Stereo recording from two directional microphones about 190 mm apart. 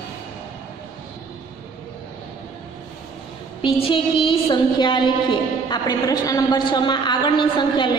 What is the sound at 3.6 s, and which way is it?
A woman's voice, 25° left (ahead or behind).